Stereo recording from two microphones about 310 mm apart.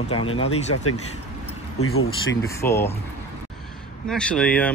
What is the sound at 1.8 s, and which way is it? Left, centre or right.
Speech, left.